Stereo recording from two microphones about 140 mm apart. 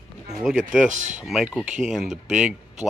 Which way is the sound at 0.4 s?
5° right (ahead or behind).